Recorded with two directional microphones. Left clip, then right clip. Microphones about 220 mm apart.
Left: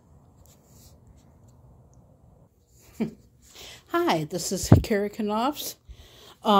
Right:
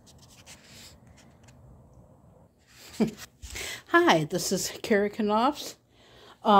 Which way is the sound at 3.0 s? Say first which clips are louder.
Right 4 dB; 20° right (ahead or behind).